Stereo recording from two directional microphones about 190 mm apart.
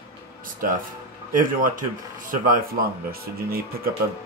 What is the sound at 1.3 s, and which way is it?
Speech, 45° right (ahead or behind).